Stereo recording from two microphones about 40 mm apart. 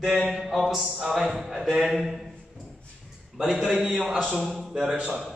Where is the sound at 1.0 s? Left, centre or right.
Centre.